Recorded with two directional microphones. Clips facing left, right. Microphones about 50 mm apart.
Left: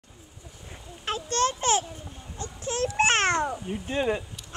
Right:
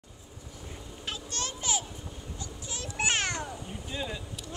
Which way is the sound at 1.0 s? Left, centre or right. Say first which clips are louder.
Left 11 dB; left.